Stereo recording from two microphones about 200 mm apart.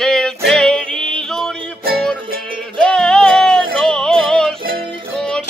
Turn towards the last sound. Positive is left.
turn(degrees=5)  # may be behind; listen again after turning